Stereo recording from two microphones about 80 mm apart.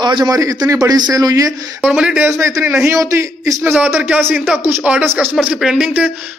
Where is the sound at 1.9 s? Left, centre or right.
Centre.